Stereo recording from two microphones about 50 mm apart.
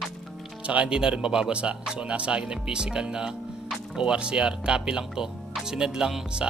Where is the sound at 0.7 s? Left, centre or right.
Right.